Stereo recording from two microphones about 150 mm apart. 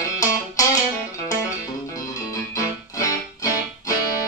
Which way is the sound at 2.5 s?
25° left (ahead or behind).